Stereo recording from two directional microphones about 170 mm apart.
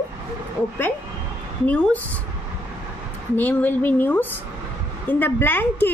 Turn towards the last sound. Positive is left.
turn(degrees=10)  # may be behind; listen again after turning